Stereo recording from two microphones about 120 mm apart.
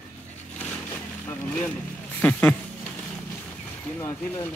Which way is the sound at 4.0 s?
30° left (ahead or behind).